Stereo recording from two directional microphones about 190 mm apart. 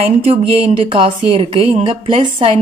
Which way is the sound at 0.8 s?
25° right (ahead or behind).